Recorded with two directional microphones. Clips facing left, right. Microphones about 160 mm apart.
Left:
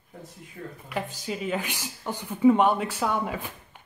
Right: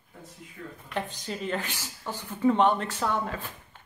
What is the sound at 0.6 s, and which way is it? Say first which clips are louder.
Speech: left 3 dB; 35° left (ahead or behind).